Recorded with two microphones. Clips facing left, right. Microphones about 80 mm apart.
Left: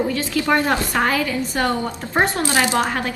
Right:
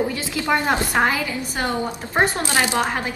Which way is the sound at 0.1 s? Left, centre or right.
Centre.